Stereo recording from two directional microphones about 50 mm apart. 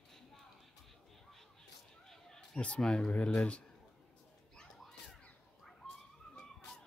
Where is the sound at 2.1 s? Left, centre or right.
Centre.